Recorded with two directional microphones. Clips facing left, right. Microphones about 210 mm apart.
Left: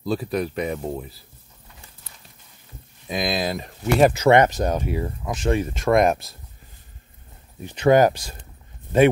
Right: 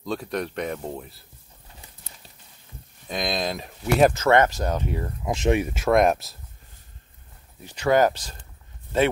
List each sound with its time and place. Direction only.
0.0 s speech: 5° left (ahead or behind)
3.1 s speech: 5° left (ahead or behind)
4.2 s speech: 15° left (ahead or behind)
5.2 s speech: 20° right (ahead or behind); by 6.3 s centre (ahead or behind)
7.6 s speech: 20° left (ahead or behind)